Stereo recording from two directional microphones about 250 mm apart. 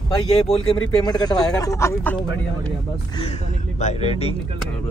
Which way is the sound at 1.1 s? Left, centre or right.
Centre.